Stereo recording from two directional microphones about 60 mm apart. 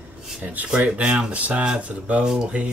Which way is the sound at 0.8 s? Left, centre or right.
Right.